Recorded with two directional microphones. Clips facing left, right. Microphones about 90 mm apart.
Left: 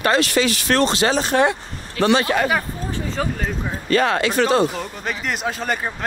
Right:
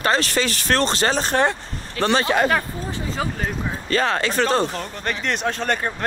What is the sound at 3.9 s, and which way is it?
Speech, 35° right (ahead or behind).